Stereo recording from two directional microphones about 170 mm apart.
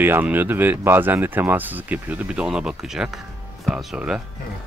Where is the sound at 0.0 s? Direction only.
10° right (ahead or behind).